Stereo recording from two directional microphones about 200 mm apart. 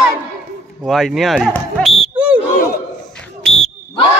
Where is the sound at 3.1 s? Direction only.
5° left (ahead or behind).